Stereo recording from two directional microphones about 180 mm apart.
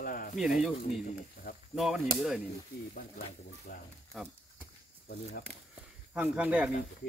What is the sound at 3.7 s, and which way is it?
Speech, 55° left (ahead or behind).